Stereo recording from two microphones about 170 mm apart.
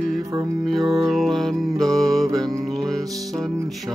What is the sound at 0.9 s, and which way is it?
Music, centre (ahead or behind).